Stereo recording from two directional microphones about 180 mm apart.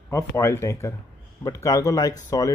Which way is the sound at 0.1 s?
15° left (ahead or behind).